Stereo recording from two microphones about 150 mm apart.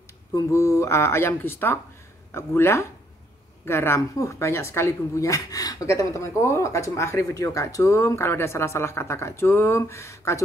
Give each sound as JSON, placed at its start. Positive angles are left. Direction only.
{"t": 0.3, "sound": "a woman's voice", "side_deg": 20}